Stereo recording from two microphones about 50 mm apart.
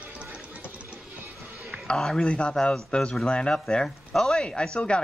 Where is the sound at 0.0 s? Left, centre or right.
Right.